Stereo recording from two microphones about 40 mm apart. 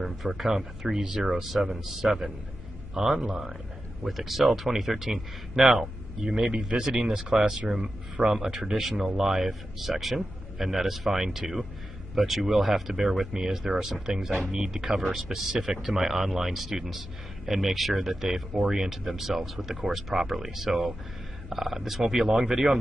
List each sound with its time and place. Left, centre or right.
0.4 s speech: centre